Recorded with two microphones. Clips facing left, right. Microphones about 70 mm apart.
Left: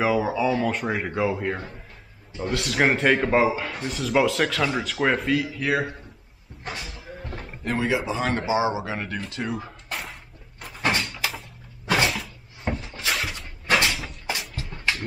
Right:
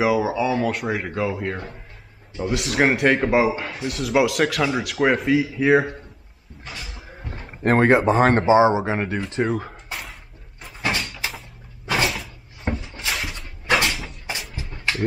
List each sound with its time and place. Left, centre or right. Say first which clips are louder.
0.0 s speech: right 2 dB; centre
2.3 s speech: right 3 dB; centre
7.6 s speech: right 9 dB; right
8.5 s speech: right 7 dB; right
9.3 s speech: right 7 dB; right
9.8 s a sound: even; centre
10.6 s door: left 1 dB; centre
11.9 s cupboard open or close: even; centre
13.8 s a sound: even; centre